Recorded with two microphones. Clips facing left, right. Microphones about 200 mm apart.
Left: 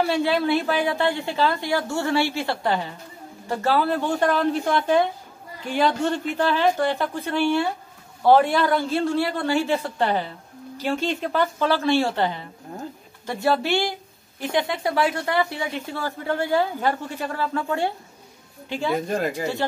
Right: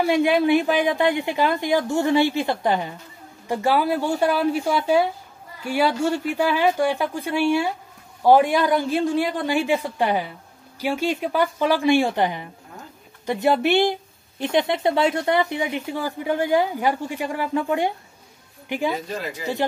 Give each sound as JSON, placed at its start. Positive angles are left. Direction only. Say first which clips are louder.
{"t": 0.0, "sound": "a woman's voice", "louder": "right 3 dB", "side_deg": -15}
{"t": 18.9, "sound": "speech", "louder": "left 5 dB", "side_deg": 50}